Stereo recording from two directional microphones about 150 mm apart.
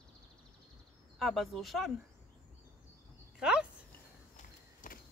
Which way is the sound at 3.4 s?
5° right (ahead or behind).